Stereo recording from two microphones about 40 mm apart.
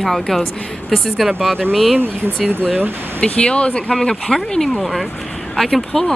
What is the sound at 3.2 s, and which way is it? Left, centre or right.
Speech, left.